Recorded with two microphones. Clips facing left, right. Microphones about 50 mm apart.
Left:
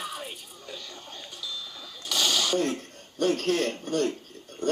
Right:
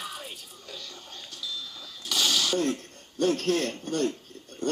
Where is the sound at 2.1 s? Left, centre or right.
Centre.